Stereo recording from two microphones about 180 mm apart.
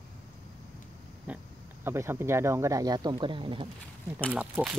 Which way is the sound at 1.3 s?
10° right (ahead or behind).